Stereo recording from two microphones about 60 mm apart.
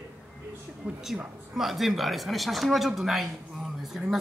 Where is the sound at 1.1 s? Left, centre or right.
Centre.